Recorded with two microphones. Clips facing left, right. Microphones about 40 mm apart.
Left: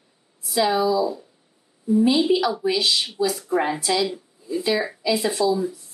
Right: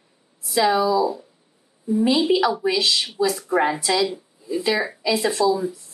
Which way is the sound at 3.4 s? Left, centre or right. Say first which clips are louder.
Right 4 dB; right.